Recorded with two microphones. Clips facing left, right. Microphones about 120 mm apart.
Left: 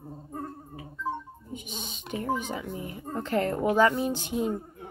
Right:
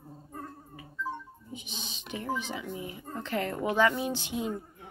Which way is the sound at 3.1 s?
45° left (ahead or behind).